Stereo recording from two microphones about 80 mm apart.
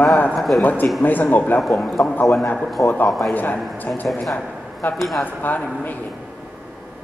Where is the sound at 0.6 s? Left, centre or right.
Left.